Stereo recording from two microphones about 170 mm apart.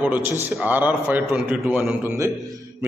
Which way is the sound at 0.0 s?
10° right (ahead or behind).